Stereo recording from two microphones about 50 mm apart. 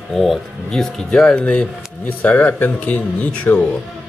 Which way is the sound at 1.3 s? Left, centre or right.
Left.